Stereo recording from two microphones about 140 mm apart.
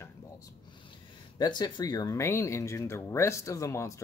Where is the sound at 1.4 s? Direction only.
30° left (ahead or behind).